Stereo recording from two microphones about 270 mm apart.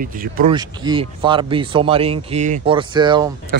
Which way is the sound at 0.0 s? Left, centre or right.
Right.